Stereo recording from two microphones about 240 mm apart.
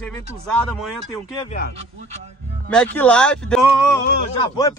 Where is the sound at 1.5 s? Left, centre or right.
Left.